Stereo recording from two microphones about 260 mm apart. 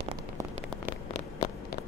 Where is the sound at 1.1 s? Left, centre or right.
Left.